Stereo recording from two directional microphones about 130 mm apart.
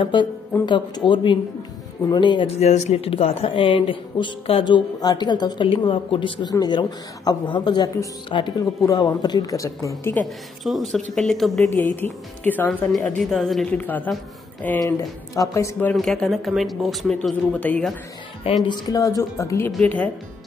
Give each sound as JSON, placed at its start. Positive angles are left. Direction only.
{"t": 0.0, "sound": "speech", "side_deg": 35}
{"t": 2.5, "sound": "speech", "side_deg": 55}
{"t": 10.6, "sound": "speech", "side_deg": 0}
{"t": 11.9, "sound": "speech", "side_deg": 15}
{"t": 13.2, "sound": "speech", "side_deg": 0}
{"t": 13.7, "sound": "speech", "side_deg": 15}
{"t": 14.8, "sound": "speech", "side_deg": 25}
{"t": 15.9, "sound": "speech", "side_deg": 5}
{"t": 17.6, "sound": "speech", "side_deg": 10}
{"t": 18.4, "sound": "speech", "side_deg": 45}
{"t": 18.9, "sound": "speech", "side_deg": 25}
{"t": 19.8, "sound": "speech", "side_deg": 10}